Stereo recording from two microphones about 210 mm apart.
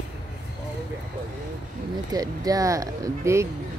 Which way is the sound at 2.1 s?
15° right (ahead or behind).